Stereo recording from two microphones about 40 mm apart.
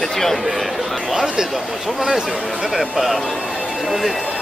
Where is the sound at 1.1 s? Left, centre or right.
Centre.